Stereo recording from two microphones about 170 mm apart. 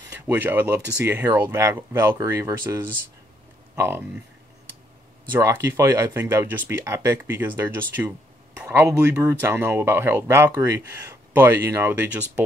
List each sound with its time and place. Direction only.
0.2 s speech: 10° right (ahead or behind)
5.3 s speech: 15° right (ahead or behind)